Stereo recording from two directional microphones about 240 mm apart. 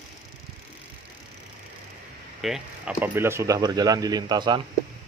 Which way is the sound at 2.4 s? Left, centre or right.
Centre.